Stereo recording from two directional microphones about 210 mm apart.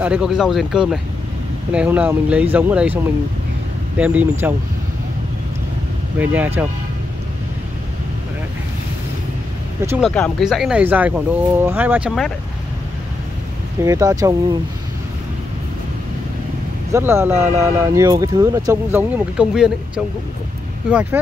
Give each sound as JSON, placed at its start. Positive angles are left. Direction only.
{"t": 0.0, "sound": "speech", "side_deg": -5}
{"t": 6.1, "sound": "speech", "side_deg": -10}
{"t": 9.8, "sound": "speech", "side_deg": -10}
{"t": 10.0, "sound": "speech", "side_deg": 0}
{"t": 13.8, "sound": "speech", "side_deg": -15}
{"t": 16.9, "sound": "speech", "side_deg": -10}
{"t": 20.9, "sound": "speech", "side_deg": -10}